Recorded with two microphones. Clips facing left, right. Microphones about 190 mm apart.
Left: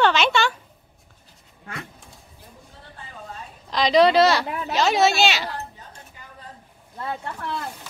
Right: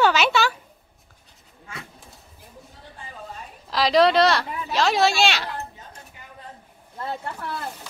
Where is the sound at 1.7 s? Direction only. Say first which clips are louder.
Left 4 dB; 60° left (ahead or behind).